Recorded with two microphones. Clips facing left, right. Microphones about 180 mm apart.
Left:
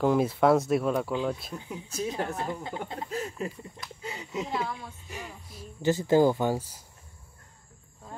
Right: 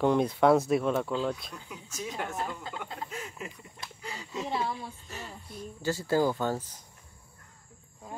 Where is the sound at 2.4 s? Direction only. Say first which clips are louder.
Left 3 dB; 20° left (ahead or behind).